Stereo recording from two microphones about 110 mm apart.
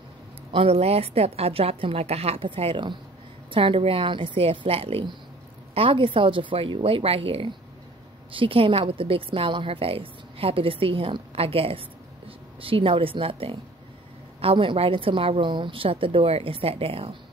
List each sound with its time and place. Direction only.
0.5 s a woman's voice: 65° right (ahead or behind)